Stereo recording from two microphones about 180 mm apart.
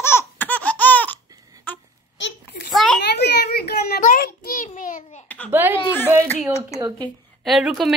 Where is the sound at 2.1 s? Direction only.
80° left.